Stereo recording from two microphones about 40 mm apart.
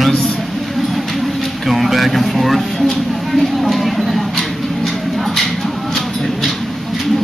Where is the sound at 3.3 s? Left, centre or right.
Centre.